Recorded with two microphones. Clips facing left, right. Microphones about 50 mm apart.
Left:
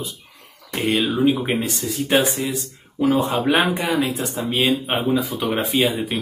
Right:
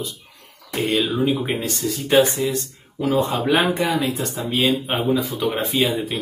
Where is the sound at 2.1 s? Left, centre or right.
Centre.